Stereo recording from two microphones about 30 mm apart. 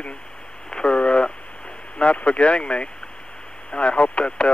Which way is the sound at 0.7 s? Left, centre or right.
Left.